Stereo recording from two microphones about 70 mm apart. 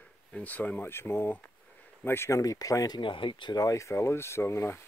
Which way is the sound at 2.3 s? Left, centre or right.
Left.